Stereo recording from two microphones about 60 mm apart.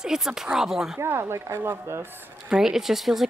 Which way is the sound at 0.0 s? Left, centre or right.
Centre.